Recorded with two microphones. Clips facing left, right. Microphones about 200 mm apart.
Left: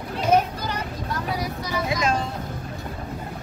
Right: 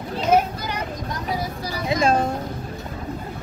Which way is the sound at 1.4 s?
30° right (ahead or behind).